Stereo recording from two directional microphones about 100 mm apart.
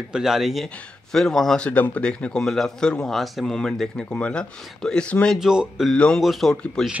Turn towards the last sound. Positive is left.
turn(degrees=5)  # may be behind; listen again after turning